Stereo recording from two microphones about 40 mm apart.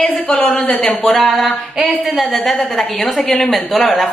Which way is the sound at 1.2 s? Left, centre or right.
Centre.